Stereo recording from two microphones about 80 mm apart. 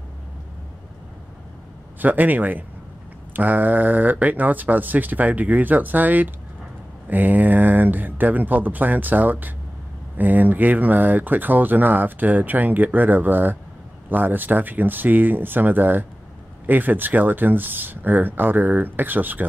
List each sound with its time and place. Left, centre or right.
2.0 s speech: right